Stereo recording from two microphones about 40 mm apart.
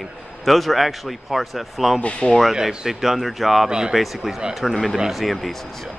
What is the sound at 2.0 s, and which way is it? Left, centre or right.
Speech, left.